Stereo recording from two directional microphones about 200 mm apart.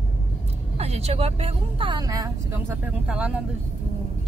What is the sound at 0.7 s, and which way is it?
A woman's voice, 30° right (ahead or behind).